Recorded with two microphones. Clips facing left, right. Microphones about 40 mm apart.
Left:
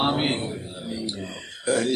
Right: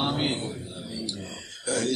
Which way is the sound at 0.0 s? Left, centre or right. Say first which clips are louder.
Left 4 dB; left.